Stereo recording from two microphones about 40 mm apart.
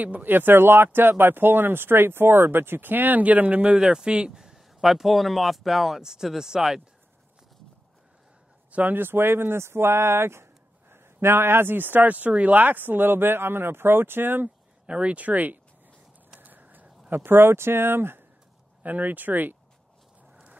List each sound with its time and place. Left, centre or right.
0.0 s speech: right
0.3 s speech: right
3.7 s speech: centre
4.4 s speech: centre
8.9 s speech: right
14.9 s speech: right
16.3 s a sound: right
17.1 s speech: right
18.8 s speech: right